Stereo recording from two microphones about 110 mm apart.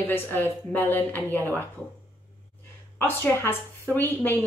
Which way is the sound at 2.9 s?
20° left (ahead or behind).